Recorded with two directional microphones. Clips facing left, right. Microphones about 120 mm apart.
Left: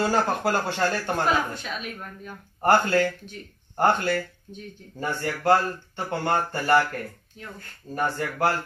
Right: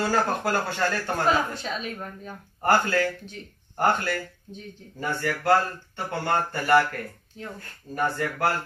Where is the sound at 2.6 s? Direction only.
25° left (ahead or behind).